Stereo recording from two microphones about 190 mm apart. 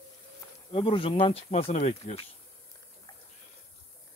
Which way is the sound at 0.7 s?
30° left (ahead or behind).